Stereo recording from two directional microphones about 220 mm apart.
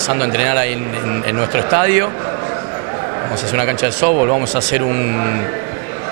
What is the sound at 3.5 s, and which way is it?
Speech, 15° right (ahead or behind).